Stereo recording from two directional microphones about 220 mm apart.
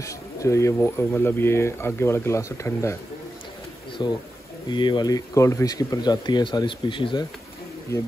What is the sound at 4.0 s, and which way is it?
Speech, 20° left (ahead or behind).